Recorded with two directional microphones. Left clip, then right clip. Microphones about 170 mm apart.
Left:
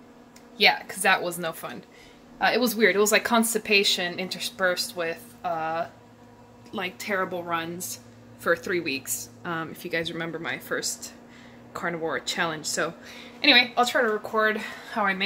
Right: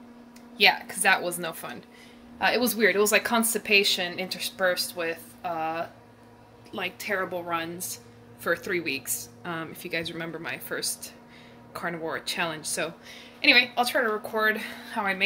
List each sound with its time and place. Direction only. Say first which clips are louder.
0.6 s a woman's voice: even; 20° left (ahead or behind)